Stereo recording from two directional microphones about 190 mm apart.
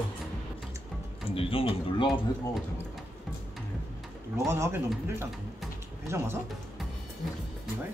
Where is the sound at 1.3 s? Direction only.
30° left (ahead or behind).